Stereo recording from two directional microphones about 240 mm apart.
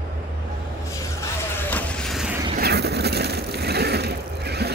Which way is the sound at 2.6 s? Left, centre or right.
Right.